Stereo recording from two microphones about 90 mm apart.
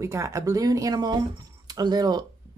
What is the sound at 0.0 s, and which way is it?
Speech, 35° right (ahead or behind).